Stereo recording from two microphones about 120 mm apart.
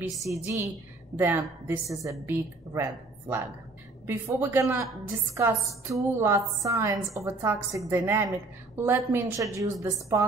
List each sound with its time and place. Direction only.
0.3 s a woman's voice: 25° right (ahead or behind)
5.9 s a woman's voice: 25° right (ahead or behind)